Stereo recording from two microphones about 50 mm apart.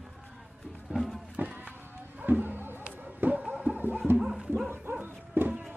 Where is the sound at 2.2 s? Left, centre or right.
Right.